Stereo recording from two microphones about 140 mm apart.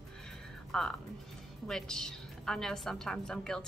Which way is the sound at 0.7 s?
5° left (ahead or behind).